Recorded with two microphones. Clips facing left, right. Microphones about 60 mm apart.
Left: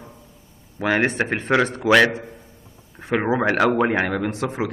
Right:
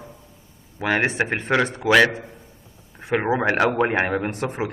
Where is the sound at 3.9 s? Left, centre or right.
Right.